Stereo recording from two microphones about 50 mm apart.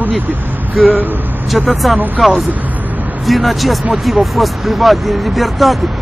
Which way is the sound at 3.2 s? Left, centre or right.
Centre.